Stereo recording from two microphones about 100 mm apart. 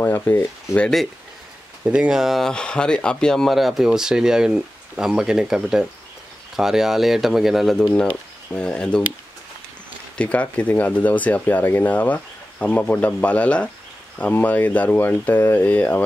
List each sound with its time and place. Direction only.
0.0 s speech: 20° left (ahead or behind)
1.9 s speech: 5° right (ahead or behind); by 9.0 s 10° left (ahead or behind)
10.1 s speech: 15° left (ahead or behind)